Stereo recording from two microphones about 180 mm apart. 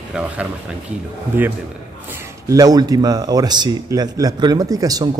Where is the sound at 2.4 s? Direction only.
20° right (ahead or behind).